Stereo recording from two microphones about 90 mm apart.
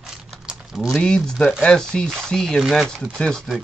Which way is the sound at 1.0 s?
10° left (ahead or behind).